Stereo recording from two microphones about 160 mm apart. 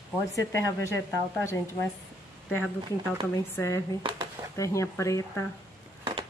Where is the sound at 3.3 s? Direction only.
20° left (ahead or behind).